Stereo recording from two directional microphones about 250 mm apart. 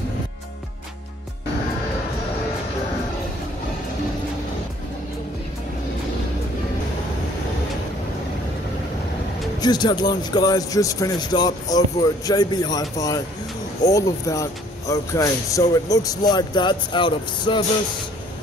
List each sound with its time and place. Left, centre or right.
9.6 s speech: centre